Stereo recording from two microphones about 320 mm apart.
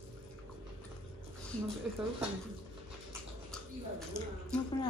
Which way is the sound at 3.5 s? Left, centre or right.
Centre.